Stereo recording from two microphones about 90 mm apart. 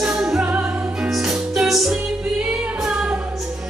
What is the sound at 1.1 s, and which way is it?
Music, 5° right (ahead or behind).